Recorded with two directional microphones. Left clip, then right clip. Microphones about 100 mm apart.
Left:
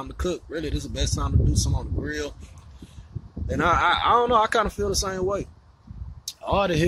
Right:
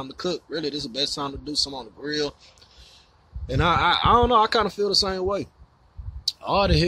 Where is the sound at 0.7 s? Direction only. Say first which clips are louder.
Right 4 dB; 25° right (ahead or behind).